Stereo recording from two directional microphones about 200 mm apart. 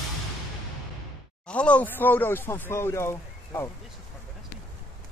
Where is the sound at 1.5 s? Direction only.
5° left (ahead or behind).